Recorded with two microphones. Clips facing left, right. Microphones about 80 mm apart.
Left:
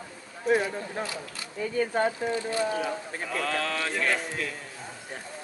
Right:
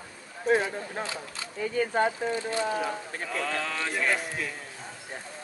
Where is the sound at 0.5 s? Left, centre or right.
Right.